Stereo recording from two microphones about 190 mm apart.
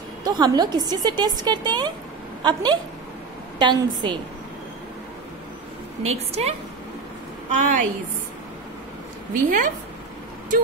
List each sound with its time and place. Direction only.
0.2 s a woman's voice: 20° right (ahead or behind)
6.0 s a woman's voice: 35° right (ahead or behind)
7.5 s a woman's voice: 40° right (ahead or behind)
9.3 s a woman's voice: 45° right (ahead or behind)